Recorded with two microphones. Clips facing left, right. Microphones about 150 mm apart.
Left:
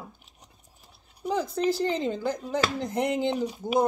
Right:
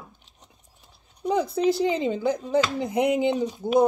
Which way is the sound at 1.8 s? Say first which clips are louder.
Right 3 dB; 10° right (ahead or behind).